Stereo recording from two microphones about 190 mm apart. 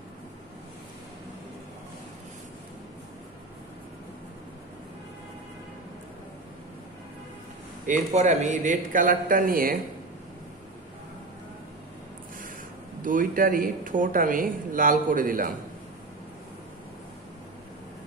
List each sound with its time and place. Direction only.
7.8 s speech: 40° right (ahead or behind)
13.0 s speech: 45° right (ahead or behind)